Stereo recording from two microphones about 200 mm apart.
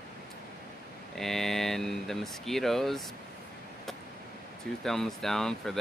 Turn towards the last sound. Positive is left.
turn(degrees=0)  # may be behind; listen again after turning